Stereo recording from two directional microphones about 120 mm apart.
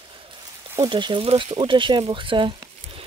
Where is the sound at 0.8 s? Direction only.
40° right (ahead or behind).